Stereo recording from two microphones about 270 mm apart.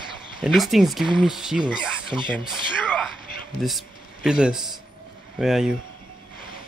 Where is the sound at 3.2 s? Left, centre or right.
Left.